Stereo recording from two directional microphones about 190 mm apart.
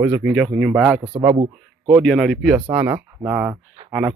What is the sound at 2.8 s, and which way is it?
Speech, 10° right (ahead or behind).